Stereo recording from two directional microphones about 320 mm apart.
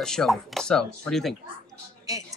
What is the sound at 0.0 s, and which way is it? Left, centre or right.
Speech, centre.